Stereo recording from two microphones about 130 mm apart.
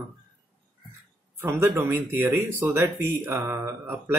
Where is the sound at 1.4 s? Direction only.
20° right (ahead or behind).